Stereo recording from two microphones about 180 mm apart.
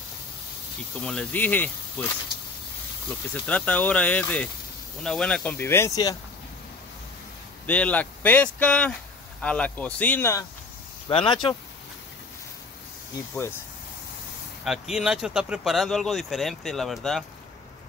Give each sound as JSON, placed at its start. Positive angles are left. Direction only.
{"t": 1.0, "sound": "speech", "side_deg": 5}
{"t": 3.4, "sound": "speech", "side_deg": 5}
{"t": 7.6, "sound": "speech", "side_deg": 10}
{"t": 11.1, "sound": "speech", "side_deg": 30}
{"t": 14.6, "sound": "speech", "side_deg": -5}